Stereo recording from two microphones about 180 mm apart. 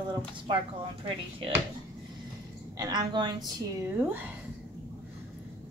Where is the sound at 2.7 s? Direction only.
20° right (ahead or behind).